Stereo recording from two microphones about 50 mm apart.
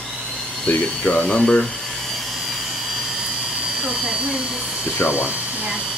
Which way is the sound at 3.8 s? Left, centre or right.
Centre.